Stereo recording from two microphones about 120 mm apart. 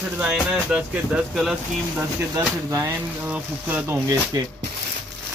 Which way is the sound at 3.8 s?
25° right (ahead or behind).